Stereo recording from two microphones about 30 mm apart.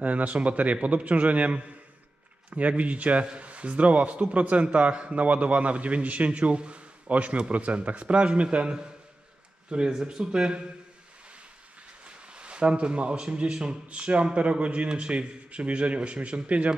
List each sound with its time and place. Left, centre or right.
0.0 s speech: right
9.7 s speech: right
12.3 s speech: right
13.8 s speech: right